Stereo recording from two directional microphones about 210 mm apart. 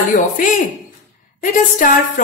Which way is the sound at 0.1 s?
40° left (ahead or behind).